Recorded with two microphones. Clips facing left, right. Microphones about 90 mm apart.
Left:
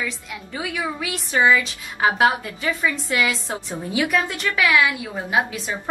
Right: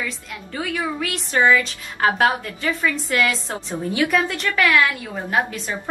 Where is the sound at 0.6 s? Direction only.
10° left (ahead or behind).